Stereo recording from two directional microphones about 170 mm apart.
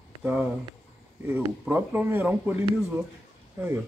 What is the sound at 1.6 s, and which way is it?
Speech, 10° right (ahead or behind).